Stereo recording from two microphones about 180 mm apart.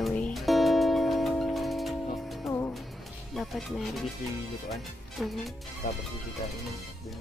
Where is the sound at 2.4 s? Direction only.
15° left (ahead or behind).